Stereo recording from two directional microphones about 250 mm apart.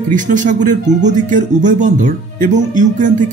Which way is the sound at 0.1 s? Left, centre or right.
Right.